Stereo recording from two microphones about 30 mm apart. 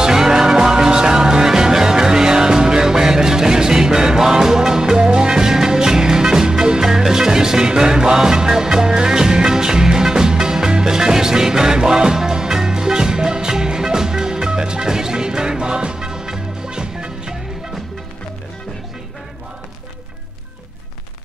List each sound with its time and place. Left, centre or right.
0.0 s music: centre
6.8 s music: centre